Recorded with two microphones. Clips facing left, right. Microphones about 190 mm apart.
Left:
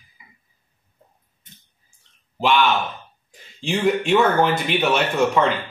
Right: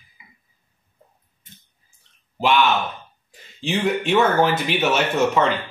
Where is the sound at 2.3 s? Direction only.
Centre (ahead or behind).